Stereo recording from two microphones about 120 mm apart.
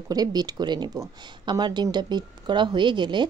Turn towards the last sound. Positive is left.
turn(degrees=-40)  # may be behind; listen again after turning